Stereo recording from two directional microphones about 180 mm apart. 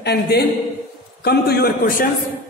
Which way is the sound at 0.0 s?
65° left (ahead or behind).